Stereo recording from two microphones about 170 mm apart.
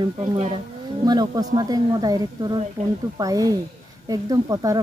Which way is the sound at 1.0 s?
25° right (ahead or behind).